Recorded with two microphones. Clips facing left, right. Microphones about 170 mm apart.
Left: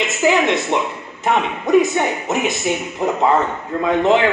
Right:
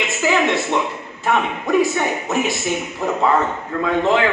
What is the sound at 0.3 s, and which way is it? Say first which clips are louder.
A man's voice: left 1 dB; 20° left (ahead or behind).